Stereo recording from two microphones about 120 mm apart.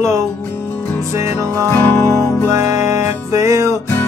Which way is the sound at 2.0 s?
25° right (ahead or behind).